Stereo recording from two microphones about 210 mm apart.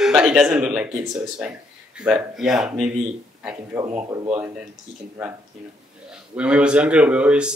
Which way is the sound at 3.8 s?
20° right (ahead or behind).